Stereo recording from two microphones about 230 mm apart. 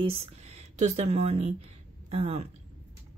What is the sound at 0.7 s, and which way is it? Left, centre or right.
Speech, right.